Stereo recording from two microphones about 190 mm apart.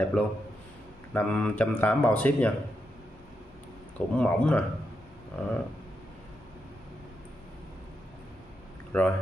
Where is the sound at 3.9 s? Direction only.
5° left (ahead or behind).